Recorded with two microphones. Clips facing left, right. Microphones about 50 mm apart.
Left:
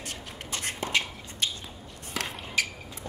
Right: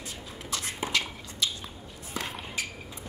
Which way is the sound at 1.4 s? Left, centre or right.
Left.